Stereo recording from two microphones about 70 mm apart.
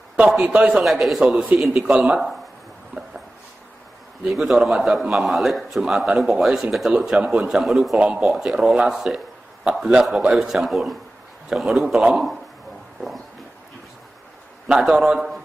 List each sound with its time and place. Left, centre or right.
0.4 s a man's voice: centre
0.7 s a man's voice: centre
1.7 s a man's voice: centre
4.2 s a man's voice: centre
14.7 s a man's voice: centre